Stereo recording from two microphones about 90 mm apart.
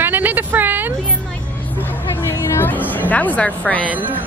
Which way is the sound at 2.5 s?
25° left (ahead or behind).